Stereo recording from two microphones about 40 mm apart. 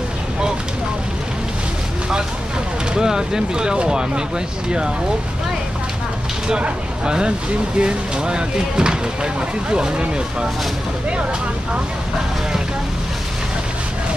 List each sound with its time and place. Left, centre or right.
2.9 s speech: centre
6.5 s speech: right